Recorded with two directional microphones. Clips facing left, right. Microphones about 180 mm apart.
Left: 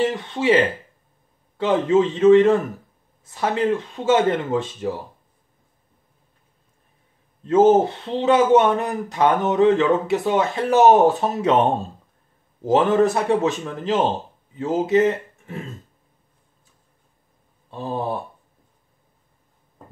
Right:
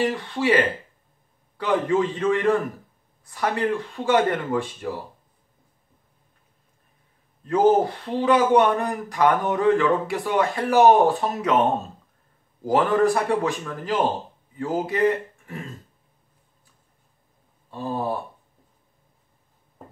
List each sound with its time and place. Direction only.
0.0 s speech: 20° left (ahead or behind)
1.6 s speech: 25° left (ahead or behind)
7.4 s speech: 25° left (ahead or behind)
17.6 s speech: 20° left (ahead or behind)